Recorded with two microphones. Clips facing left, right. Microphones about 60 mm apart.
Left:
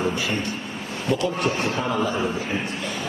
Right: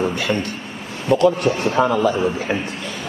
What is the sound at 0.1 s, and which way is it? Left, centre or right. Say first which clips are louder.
Speech: right 4 dB; right.